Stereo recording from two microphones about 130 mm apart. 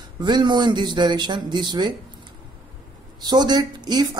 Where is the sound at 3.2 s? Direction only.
35° right (ahead or behind).